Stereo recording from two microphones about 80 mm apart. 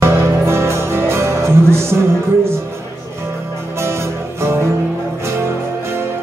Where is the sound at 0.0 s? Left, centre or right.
Right.